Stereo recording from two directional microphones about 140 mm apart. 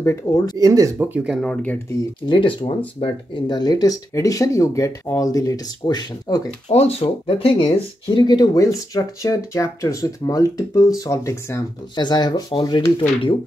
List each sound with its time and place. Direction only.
0.0 s speech: 25° left (ahead or behind)
0.6 s speech: 25° right (ahead or behind)
0.9 s speech: 15° right (ahead or behind)
1.3 s speech: 5° left (ahead or behind)
2.2 s speech: 35° left (ahead or behind)
6.7 s speech: 50° left (ahead or behind)